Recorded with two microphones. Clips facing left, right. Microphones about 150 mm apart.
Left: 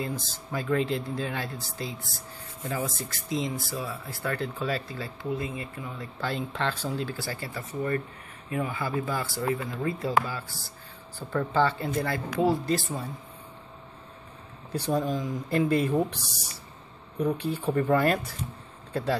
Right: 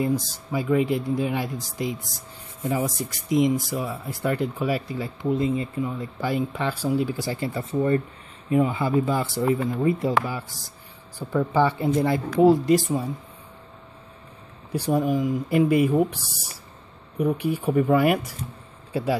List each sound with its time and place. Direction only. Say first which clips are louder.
0.0 s speech: right 9 dB; 10° right (ahead or behind)
14.7 s speech: right 5 dB; 10° right (ahead or behind)
17.2 s speech: right 4 dB; 10° right (ahead or behind)